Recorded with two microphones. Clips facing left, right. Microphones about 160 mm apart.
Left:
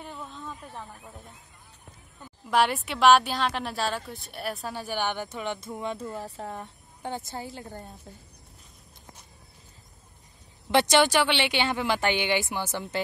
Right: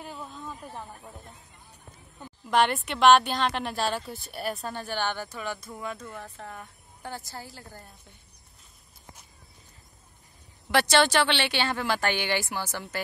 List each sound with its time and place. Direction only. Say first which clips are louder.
0.0 s a sound: even; 5° right (ahead or behind)
0.5 s speech: right 1 dB; 5° right (ahead or behind)
2.5 s speech: even; 5° left (ahead or behind); by 7.9 s 20° left (ahead or behind)
10.7 s speech: left 1 dB; 20° left (ahead or behind)